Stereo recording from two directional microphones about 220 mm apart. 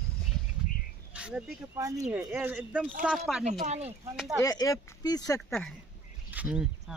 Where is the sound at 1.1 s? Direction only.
5° right (ahead or behind).